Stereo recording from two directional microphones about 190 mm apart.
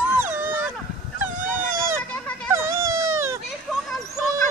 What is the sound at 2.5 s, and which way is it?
Cat, 15° right (ahead or behind).